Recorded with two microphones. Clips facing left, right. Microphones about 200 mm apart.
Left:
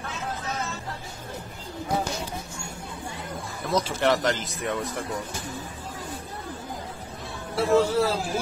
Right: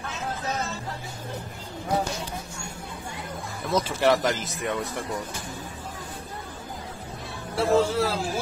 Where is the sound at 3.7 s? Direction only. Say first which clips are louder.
Right 1 dB; 10° right (ahead or behind).